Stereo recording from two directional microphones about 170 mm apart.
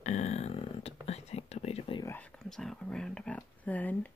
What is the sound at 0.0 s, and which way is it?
Whispering, 40° left (ahead or behind).